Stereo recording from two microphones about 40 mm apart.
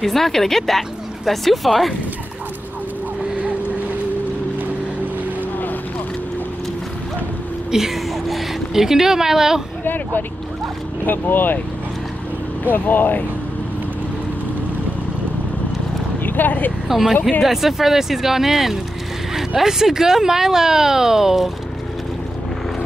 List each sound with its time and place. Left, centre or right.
0.0 s speech: centre
7.7 s speech: centre
9.8 s speech: left
12.7 s speech: left
16.2 s speech: left
16.8 s speech: centre